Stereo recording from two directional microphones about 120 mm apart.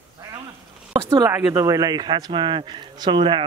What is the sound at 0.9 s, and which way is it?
Speech, 25° right (ahead or behind).